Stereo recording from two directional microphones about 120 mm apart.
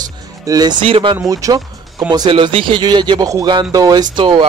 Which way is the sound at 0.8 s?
45° right (ahead or behind).